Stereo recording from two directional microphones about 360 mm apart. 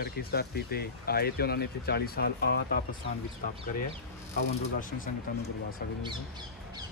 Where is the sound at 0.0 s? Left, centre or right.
Left.